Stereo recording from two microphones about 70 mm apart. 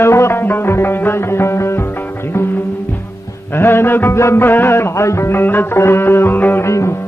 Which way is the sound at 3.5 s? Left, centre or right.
Left.